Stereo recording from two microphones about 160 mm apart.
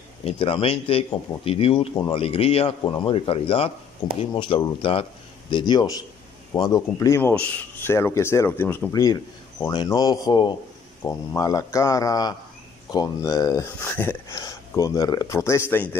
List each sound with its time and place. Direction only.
0.2 s speech: 35° left (ahead or behind); by 16.0 s 15° left (ahead or behind)